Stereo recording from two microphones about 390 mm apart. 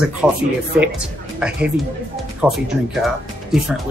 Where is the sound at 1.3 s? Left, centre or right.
Centre.